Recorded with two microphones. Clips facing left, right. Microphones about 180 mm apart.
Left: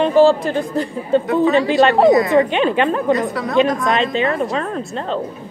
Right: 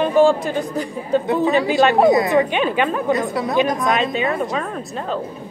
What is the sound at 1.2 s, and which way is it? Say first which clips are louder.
Speech: left 2 dB; 25° right (ahead or behind).